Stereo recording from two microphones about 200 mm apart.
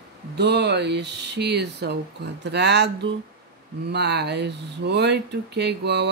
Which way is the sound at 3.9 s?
55° right (ahead or behind).